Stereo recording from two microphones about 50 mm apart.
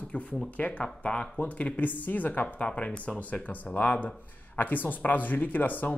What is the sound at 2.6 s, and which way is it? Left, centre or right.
Speech, left.